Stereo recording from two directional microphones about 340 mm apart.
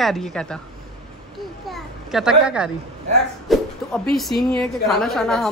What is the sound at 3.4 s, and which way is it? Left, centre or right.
Speech, centre.